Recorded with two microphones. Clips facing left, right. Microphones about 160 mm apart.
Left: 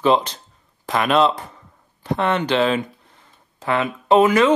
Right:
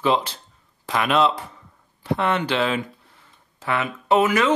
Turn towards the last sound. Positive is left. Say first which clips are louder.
# left 4 dB
turn(degrees=30)  # may be behind; listen again after turning